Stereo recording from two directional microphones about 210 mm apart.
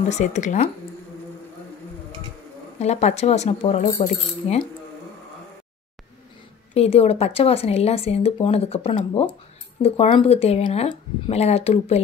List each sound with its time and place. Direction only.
0.1 s speech: 35° left (ahead or behind)
2.8 s speech: 30° left (ahead or behind)
6.7 s speech: 30° left (ahead or behind)